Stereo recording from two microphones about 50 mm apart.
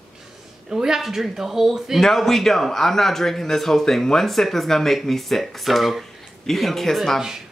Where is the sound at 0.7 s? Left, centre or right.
Centre.